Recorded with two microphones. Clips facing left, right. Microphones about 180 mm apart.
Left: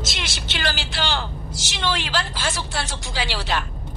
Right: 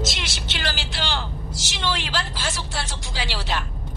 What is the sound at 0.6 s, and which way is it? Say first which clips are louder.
A woman's voice: left 3 dB; 60° left (ahead or behind).